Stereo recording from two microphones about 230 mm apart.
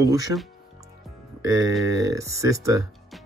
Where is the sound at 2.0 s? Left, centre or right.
Centre.